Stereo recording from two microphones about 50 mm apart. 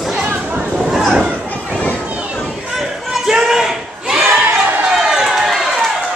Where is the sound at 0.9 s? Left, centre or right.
Centre.